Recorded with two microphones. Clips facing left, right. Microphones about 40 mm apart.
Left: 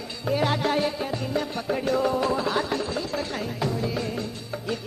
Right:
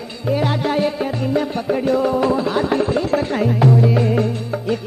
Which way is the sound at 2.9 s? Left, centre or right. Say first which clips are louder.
Right 10 dB; right.